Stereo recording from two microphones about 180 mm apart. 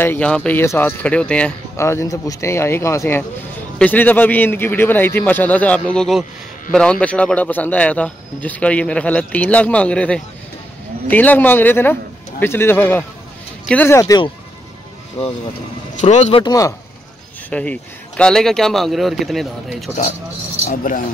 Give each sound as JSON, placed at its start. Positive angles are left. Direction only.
{"t": 0.0, "sound": "speech", "side_deg": 10}
{"t": 16.0, "sound": "speech", "side_deg": 40}
{"t": 17.5, "sound": "speech", "side_deg": 5}